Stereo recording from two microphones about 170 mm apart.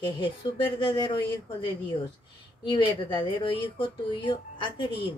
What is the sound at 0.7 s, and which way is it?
Speech, 30° left (ahead or behind).